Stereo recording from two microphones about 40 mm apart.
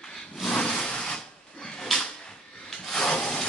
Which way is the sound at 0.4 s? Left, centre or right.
Centre.